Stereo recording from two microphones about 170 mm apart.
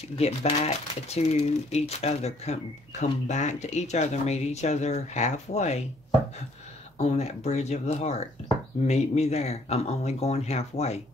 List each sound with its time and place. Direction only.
0.2 s speech: 40° left (ahead or behind)
7.0 s speech: 40° left (ahead or behind)